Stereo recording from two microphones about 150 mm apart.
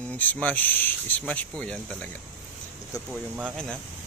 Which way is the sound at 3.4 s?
5° left (ahead or behind).